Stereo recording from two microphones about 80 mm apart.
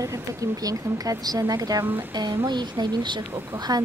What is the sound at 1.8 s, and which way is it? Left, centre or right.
Speech, right.